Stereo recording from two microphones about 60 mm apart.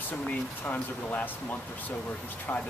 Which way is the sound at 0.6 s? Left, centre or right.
Left.